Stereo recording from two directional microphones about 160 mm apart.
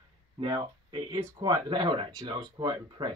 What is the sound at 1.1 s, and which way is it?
Speech, 25° right (ahead or behind).